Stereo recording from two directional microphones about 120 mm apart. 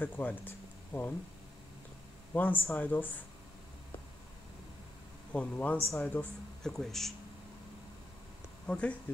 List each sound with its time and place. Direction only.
0.0 s speech: 15° left (ahead or behind)
2.3 s speech: 15° left (ahead or behind)
5.3 s speech: 10° left (ahead or behind)
8.6 s speech: 10° left (ahead or behind)